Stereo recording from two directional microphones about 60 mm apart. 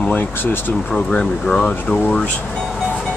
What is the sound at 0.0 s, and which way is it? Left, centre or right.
Speech, left.